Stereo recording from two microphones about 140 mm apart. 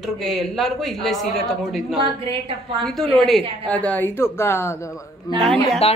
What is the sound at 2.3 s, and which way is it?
Speech, 25° left (ahead or behind).